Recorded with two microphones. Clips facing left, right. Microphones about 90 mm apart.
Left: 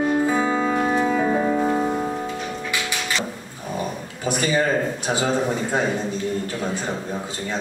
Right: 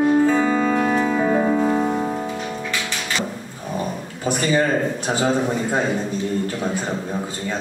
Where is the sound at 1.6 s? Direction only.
5° right (ahead or behind).